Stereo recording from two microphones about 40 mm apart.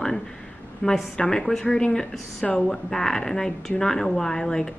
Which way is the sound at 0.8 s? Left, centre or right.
Left.